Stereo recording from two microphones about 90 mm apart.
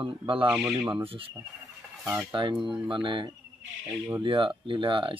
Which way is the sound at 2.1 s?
30° right (ahead or behind).